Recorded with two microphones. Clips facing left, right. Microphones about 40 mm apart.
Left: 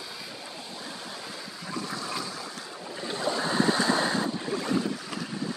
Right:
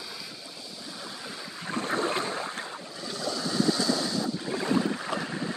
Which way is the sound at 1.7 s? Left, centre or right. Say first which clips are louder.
Right 6 dB; right.